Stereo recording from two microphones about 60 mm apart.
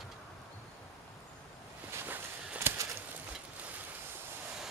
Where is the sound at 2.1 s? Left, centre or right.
Right.